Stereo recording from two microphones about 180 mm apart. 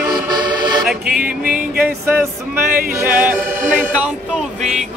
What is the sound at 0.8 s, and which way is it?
Music, 5° right (ahead or behind).